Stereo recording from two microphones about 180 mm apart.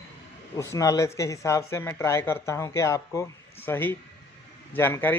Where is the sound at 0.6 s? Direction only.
15° left (ahead or behind).